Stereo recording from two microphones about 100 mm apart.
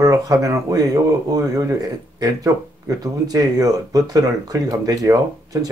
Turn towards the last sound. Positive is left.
turn(degrees=-35)  # may be behind; listen again after turning